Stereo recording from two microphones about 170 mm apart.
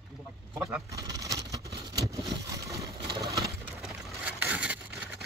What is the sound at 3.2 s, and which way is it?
Pigeon, 20° right (ahead or behind).